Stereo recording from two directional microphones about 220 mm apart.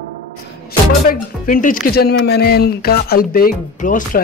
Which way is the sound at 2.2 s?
45° left (ahead or behind).